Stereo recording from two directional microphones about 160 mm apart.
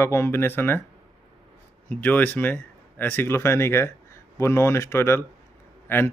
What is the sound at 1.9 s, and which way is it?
Speech, 10° left (ahead or behind).